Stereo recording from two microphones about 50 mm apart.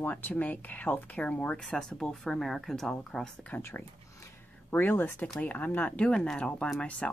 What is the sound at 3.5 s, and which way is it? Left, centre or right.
Speech, left.